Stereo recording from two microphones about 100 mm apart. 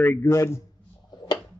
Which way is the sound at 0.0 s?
25° left (ahead or behind).